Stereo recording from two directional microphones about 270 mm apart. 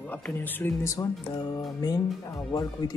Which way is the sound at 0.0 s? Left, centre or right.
Centre.